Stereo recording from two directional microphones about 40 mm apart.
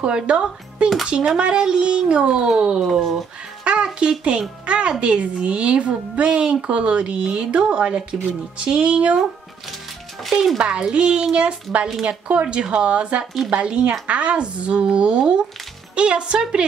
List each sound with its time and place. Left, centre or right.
0.0 s speech: right
3.0 s speech: centre
3.6 s music: right
4.3 s speech: right
10.2 s speech: centre
10.7 s speech: right